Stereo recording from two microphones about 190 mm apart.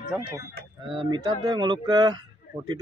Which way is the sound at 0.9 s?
25° right (ahead or behind).